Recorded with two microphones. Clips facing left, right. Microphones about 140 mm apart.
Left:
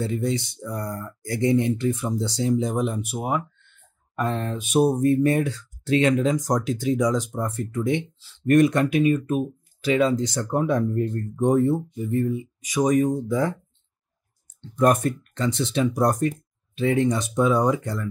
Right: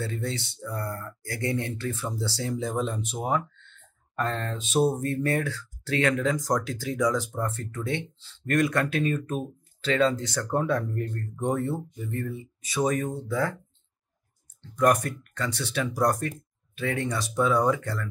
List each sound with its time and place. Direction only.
0.0 s speech: 15° left (ahead or behind)
14.8 s speech: 25° left (ahead or behind)